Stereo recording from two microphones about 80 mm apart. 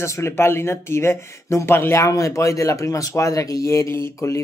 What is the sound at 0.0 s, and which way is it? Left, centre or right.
Speech, left.